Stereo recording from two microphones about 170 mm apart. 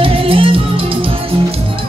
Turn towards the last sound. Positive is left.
turn(degrees=-30)  # may be behind; listen again after turning